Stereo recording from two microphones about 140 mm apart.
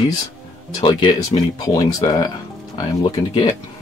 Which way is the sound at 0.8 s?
40° left (ahead or behind).